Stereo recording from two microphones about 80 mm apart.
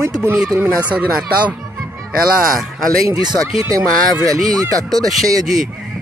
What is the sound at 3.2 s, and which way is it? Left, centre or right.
Speech, right.